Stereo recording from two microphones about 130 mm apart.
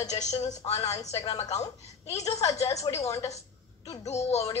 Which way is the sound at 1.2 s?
30° left (ahead or behind).